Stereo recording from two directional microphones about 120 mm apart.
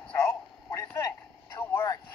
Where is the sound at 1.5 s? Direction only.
20° left (ahead or behind).